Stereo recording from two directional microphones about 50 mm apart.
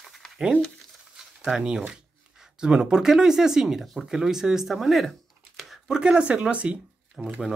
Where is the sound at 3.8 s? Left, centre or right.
Centre.